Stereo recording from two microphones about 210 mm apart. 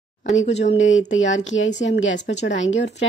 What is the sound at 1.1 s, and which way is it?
A woman's voice, 60° left (ahead or behind).